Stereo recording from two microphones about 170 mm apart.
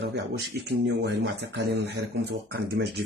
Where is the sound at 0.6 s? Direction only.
80° right.